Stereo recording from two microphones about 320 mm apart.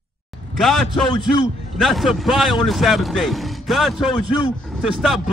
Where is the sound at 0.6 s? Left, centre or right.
Centre.